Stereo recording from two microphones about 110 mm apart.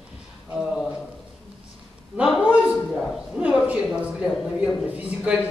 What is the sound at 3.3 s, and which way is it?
Speech, 15° right (ahead or behind).